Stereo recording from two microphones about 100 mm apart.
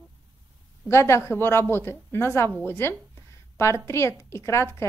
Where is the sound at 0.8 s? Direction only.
30° left (ahead or behind).